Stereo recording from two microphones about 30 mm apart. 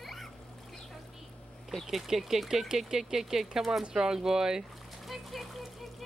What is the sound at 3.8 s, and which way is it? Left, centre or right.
Speech, right.